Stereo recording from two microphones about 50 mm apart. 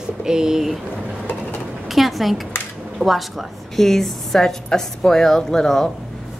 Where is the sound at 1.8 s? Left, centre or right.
Centre.